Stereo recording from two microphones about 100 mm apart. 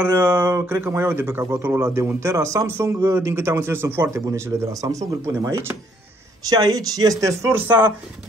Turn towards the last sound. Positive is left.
turn(degrees=-20)  # may be behind; listen again after turning